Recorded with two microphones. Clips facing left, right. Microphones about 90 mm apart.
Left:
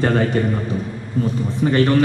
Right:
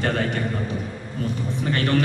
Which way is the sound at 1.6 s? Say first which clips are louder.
Left 8 dB; 25° left (ahead or behind).